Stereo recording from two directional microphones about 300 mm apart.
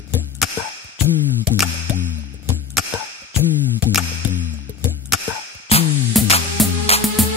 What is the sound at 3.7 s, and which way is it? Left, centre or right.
Music, centre.